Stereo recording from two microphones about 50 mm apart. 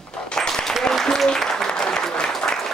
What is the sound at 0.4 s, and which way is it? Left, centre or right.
Applause, centre.